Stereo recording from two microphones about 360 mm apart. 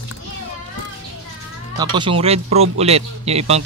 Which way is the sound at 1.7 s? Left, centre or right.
Centre.